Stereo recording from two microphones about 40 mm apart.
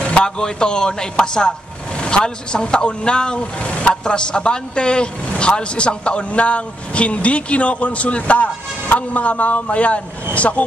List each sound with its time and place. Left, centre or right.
0.0 s a man's voice: left
3.6 s vehicle: left
3.9 s a man's voice: left